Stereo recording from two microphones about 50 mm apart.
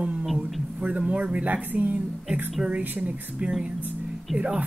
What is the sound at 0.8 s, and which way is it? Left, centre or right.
Speech, right.